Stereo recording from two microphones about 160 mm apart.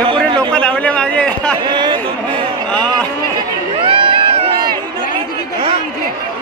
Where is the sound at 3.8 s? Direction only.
35° right (ahead or behind).